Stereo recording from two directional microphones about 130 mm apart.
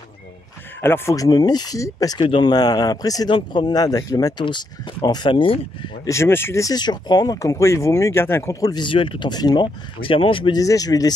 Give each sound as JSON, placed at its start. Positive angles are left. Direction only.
{"t": 0.7, "sound": "speech", "side_deg": 15}
{"t": 6.0, "sound": "speech", "side_deg": 20}
{"t": 8.8, "sound": "speech", "side_deg": 40}
{"t": 10.6, "sound": "speech", "side_deg": 25}